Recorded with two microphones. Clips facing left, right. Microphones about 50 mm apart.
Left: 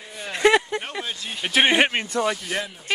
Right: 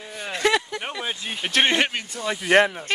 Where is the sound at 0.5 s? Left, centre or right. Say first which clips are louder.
Left 4 dB; left.